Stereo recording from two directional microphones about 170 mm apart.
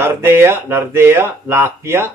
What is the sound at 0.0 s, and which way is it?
A man's voice, 15° right (ahead or behind).